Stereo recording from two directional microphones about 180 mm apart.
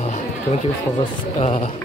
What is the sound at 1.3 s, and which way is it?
Speech, 35° left (ahead or behind).